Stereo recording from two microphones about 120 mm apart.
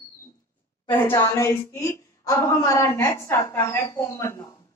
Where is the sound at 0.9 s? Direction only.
15° left (ahead or behind).